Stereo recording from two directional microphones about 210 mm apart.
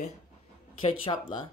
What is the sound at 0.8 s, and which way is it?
Cutlery, 25° left (ahead or behind).